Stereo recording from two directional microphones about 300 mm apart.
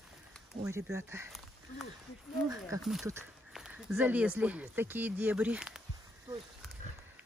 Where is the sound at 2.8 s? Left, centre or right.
Centre.